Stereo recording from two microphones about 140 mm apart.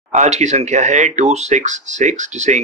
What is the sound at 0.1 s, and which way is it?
Speech, 55° right (ahead or behind).